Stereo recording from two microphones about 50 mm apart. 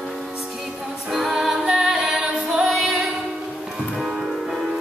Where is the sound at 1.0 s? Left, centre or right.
Centre.